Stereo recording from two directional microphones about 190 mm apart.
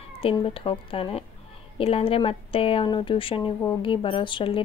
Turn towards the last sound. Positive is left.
turn(degrees=25)  # may be behind; listen again after turning